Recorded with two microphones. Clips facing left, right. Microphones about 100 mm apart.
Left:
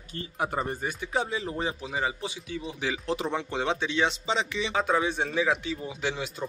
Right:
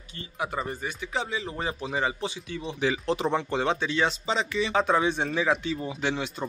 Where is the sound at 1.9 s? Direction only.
5° left (ahead or behind).